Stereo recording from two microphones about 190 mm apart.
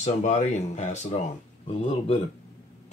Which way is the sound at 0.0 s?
35° left (ahead or behind).